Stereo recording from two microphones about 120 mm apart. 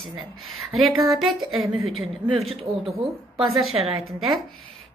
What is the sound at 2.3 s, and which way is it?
Speech, 55° right (ahead or behind).